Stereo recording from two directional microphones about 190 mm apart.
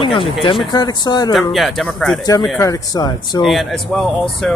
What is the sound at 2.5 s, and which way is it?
Speech, 15° left (ahead or behind).